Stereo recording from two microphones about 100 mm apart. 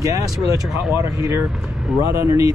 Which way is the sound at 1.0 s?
25° right (ahead or behind).